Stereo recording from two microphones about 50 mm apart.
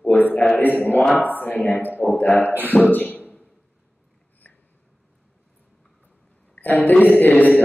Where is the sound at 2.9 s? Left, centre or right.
Left.